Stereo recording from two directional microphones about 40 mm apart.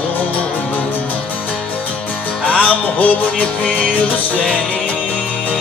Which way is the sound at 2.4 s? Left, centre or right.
Left.